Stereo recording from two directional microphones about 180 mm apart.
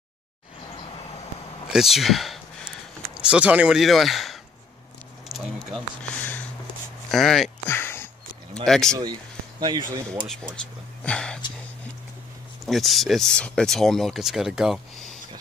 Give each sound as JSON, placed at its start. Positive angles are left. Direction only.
{"t": 1.7, "sound": "speech", "side_deg": 0}
{"t": 5.3, "sound": "a sound", "side_deg": 0}
{"t": 7.1, "sound": "speech", "side_deg": 0}
{"t": 7.6, "sound": "a sound", "side_deg": 10}
{"t": 8.6, "sound": "speech", "side_deg": 5}
{"t": 9.6, "sound": "speech", "side_deg": -25}
{"t": 10.2, "sound": "speech", "side_deg": 5}
{"t": 12.6, "sound": "speech", "side_deg": 0}